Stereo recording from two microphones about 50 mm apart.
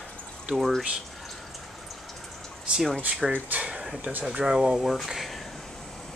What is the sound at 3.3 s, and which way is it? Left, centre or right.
Speech, right.